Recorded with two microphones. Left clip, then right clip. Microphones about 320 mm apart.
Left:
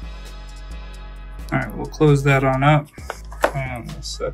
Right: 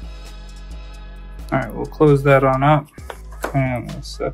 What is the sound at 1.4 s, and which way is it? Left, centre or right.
Speech, centre.